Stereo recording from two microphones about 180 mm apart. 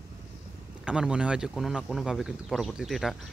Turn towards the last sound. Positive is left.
turn(degrees=0)  # may be behind; listen again after turning